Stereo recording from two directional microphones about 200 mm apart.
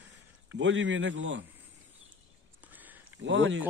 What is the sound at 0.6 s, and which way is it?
Speech, 65° right (ahead or behind).